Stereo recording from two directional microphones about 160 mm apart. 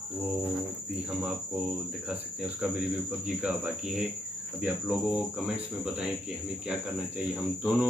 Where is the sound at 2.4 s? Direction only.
5° right (ahead or behind).